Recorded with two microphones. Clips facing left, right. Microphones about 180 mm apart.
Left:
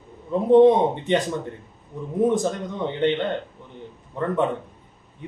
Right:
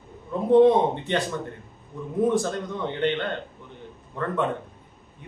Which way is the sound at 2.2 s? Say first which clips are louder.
Left 2 dB; 20° left (ahead or behind).